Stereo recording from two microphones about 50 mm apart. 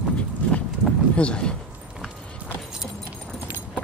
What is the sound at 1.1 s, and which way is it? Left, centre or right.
Speech, left.